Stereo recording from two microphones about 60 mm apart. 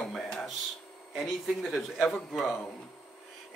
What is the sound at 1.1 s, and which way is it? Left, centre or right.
A man's voice, centre.